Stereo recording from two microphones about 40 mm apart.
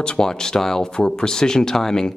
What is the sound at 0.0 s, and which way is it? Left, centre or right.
Speech, centre.